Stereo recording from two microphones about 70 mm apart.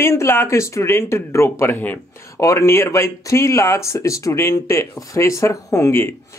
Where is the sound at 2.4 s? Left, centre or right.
Left.